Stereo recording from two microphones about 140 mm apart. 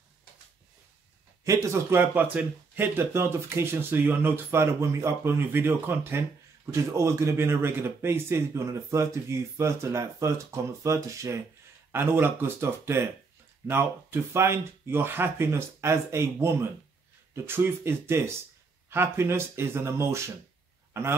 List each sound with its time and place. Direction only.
1.4 s speech: 20° right (ahead or behind)